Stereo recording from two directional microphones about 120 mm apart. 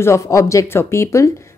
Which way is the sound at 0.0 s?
25° left (ahead or behind).